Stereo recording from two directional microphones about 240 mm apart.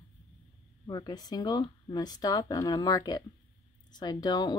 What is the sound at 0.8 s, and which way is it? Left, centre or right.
Speech, centre.